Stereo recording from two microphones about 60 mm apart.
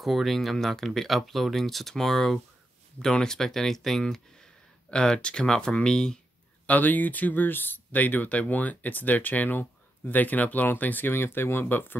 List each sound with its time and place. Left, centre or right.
0.0 s speech: centre
6.6 s speech: left